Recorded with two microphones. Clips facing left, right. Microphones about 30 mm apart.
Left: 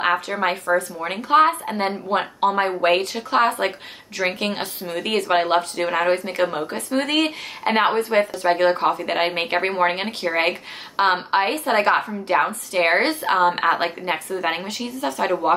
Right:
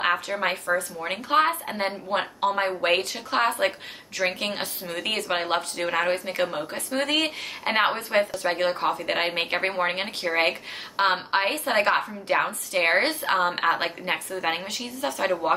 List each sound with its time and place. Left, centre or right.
0.4 s speech: centre
5.9 s speech: centre